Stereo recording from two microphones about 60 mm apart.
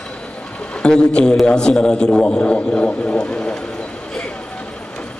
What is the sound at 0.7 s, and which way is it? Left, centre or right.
A man's voice, centre.